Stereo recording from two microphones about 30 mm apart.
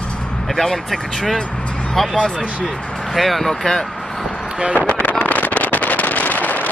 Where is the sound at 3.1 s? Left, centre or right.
Centre.